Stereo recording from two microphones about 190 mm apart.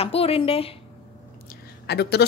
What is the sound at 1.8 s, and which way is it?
Speech, 60° left (ahead or behind).